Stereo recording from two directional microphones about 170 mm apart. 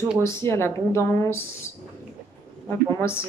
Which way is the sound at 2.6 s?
15° left (ahead or behind).